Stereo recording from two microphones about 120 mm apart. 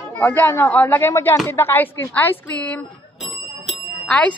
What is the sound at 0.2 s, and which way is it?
A woman's voice, 20° left (ahead or behind).